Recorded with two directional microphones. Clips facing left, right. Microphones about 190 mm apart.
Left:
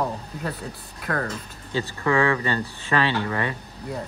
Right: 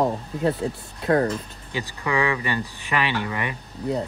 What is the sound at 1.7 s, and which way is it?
Speech, 15° right (ahead or behind).